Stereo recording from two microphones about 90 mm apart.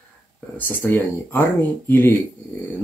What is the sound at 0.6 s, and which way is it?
Speech, 20° left (ahead or behind).